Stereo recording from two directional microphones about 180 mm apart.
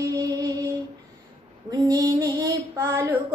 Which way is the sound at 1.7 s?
20° right (ahead or behind).